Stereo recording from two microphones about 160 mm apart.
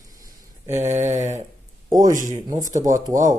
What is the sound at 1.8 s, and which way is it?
Speech, 20° right (ahead or behind).